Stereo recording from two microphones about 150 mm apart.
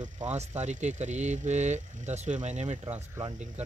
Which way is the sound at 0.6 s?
50° right (ahead or behind).